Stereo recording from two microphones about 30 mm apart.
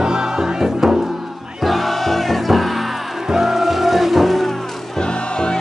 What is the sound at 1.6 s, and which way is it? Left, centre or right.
Music, centre.